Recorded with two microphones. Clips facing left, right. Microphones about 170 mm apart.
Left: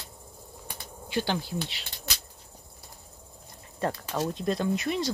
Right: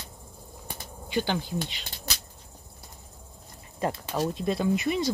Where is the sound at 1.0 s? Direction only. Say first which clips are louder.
Right 1 dB; centre (ahead or behind).